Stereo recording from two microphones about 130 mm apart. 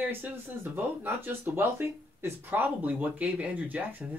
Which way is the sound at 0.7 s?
15° right (ahead or behind).